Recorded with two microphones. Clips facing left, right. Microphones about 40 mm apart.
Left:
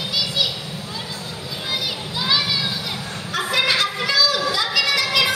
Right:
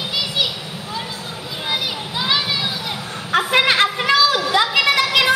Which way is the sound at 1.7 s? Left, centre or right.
Right.